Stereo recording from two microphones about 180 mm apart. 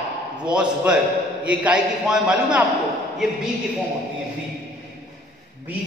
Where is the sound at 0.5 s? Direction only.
5° right (ahead or behind).